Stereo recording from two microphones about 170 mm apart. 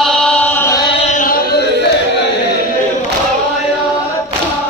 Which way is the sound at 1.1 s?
50° left (ahead or behind).